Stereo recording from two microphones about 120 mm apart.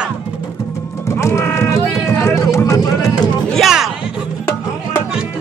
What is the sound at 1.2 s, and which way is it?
Run, 20° left (ahead or behind).